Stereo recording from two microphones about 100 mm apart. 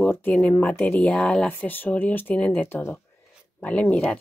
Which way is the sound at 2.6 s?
25° left (ahead or behind).